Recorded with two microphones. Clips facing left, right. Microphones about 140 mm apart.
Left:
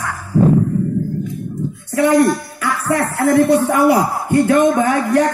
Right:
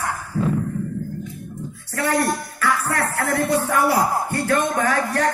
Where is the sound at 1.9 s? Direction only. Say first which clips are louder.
Left 8 dB; 15° left (ahead or behind).